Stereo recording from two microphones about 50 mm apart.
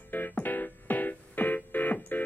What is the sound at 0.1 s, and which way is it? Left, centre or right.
Music, left.